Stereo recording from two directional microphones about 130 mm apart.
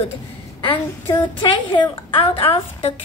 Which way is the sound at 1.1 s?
35° left (ahead or behind).